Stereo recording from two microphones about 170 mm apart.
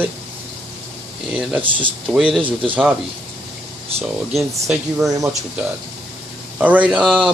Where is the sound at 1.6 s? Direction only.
30° right (ahead or behind).